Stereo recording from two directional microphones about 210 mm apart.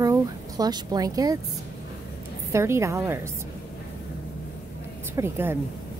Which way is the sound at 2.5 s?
15° right (ahead or behind).